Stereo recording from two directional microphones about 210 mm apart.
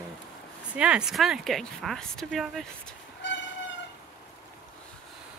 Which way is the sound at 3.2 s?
60° left (ahead or behind).